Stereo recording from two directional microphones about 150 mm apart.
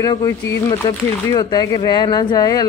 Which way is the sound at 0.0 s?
25° left (ahead or behind).